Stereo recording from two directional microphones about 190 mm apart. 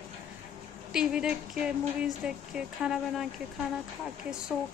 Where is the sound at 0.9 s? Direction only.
5° right (ahead or behind).